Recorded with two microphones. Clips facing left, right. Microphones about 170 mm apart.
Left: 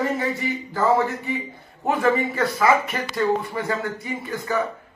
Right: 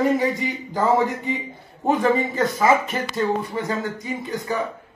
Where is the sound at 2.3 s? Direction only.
20° right (ahead or behind).